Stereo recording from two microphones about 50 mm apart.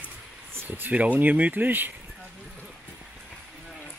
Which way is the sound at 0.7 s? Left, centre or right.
Right.